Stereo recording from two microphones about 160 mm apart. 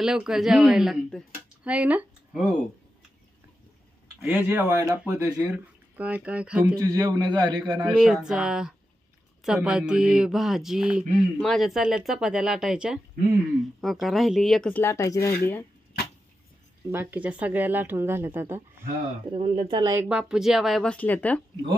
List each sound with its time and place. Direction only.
0.0 s speech: 5° right (ahead or behind)
4.2 s speech: 10° right (ahead or behind)
6.8 s a man's voice: 20° right (ahead or behind)
7.9 s speech: 5° right (ahead or behind)
14.8 s speech: 20° left (ahead or behind)
16.9 s speech: 10° right (ahead or behind)
19.3 s speech: 40° right (ahead or behind)
19.8 s a man's voice: 20° right (ahead or behind)
20.1 s speech: 5° right (ahead or behind); by 21.4 s 10° left (ahead or behind)